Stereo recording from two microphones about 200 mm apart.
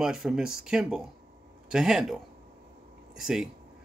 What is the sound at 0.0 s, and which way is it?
Speech, centre (ahead or behind).